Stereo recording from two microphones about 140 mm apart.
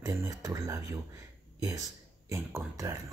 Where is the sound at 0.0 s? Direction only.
25° right (ahead or behind).